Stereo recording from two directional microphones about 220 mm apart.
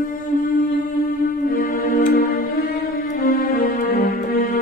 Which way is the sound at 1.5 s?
40° left (ahead or behind).